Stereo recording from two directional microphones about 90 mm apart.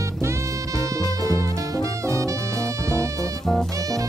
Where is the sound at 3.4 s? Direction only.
5° left (ahead or behind).